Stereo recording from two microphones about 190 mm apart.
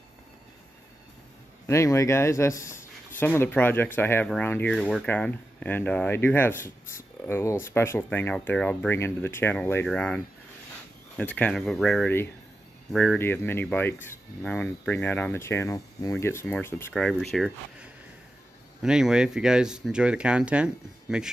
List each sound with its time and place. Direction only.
1.7 s speech: 15° left (ahead or behind); by 21.3 s 5° right (ahead or behind)